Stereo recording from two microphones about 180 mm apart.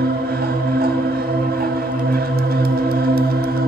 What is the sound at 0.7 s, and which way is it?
Music, 60° right (ahead or behind).